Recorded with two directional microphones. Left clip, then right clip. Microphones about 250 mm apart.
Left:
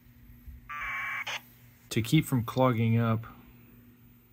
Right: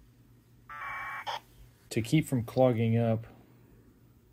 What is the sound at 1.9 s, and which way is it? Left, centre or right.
Speech, left.